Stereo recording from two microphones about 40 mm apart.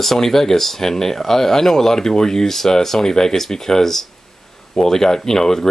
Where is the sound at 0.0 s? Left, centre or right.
Centre.